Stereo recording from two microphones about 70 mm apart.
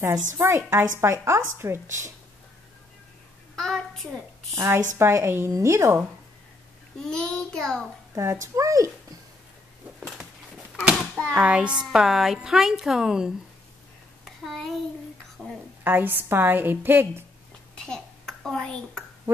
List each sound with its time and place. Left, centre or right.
0.0 s a woman's voice: right
3.5 s a sound: centre
4.6 s a woman's voice: right
7.0 s a child's voice: centre
8.1 s speech: right
9.9 s a sound: centre
11.0 s a sound: centre
11.4 s a woman's voice: centre
14.4 s a child's voice: centre
15.8 s a woman's voice: right
17.8 s a child's voice: centre